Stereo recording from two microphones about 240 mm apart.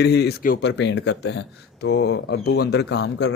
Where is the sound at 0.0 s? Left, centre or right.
Left.